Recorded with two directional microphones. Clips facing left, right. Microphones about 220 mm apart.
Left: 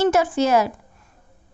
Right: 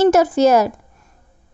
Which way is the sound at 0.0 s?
40° right (ahead or behind).